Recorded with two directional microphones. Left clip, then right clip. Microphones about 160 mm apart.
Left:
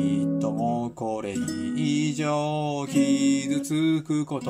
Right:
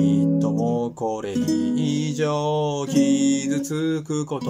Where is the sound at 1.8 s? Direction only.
15° left (ahead or behind).